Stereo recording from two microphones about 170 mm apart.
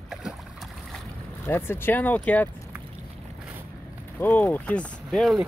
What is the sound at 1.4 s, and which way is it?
Speech, 15° left (ahead or behind).